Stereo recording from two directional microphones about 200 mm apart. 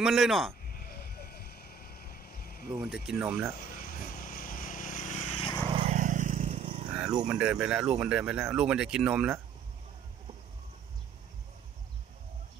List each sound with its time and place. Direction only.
0.0 s speech: centre (ahead or behind)
0.7 s vehicle: 45° left (ahead or behind)
2.7 s speech: centre (ahead or behind)
3.5 s vehicle: 45° left (ahead or behind); by 5.6 s 25° left (ahead or behind)
5.8 s vehicle: 35° right (ahead or behind)
7.2 s speech: 5° right (ahead or behind)